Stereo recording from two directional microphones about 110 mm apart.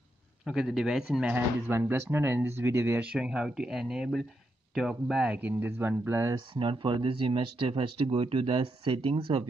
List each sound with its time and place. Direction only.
0.5 s speech: 5° right (ahead or behind)
1.3 s speech: 20° right (ahead or behind)
6.3 s speech: 50° right (ahead or behind)